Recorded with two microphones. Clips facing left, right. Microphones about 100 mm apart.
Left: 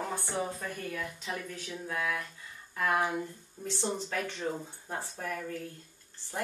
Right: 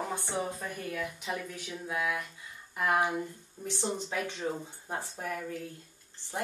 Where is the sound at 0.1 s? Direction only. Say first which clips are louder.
Even; 15° right (ahead or behind).